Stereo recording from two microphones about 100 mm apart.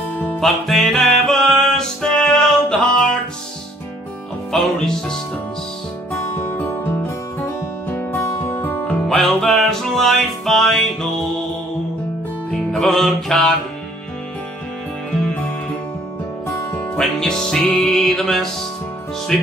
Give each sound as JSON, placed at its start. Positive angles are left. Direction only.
{"t": 0.4, "sound": "music", "side_deg": 0}
{"t": 4.5, "sound": "music", "side_deg": 5}
{"t": 6.1, "sound": "music", "side_deg": 20}
{"t": 9.1, "sound": "music", "side_deg": 0}
{"t": 12.7, "sound": "music", "side_deg": 0}
{"t": 16.9, "sound": "music", "side_deg": 5}